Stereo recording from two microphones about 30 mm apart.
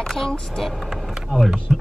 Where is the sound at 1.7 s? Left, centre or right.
Centre.